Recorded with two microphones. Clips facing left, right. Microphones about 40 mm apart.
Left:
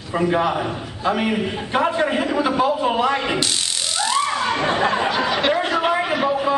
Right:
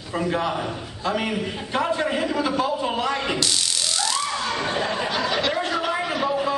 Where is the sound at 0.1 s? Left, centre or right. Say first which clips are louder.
Left 5 dB; centre.